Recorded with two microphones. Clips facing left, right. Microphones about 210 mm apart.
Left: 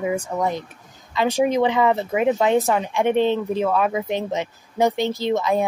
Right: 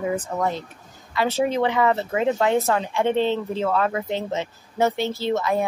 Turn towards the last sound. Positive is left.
turn(degrees=15)  # may be behind; listen again after turning